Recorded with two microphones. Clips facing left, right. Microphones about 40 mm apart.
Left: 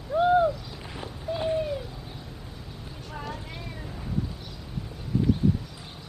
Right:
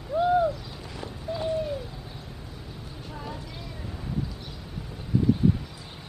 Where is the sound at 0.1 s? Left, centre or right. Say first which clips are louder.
Left 2 dB; left.